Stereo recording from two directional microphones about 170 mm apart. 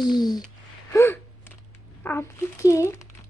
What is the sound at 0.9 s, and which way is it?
Gasp, 15° left (ahead or behind).